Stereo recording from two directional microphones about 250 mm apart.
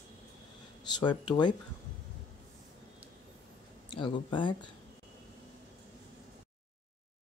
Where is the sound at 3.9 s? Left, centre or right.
Centre.